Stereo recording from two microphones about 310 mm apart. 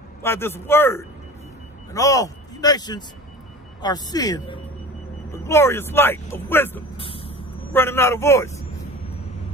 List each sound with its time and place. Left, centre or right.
0.2 s speech: centre
7.0 s vehicle: centre
7.7 s speech: centre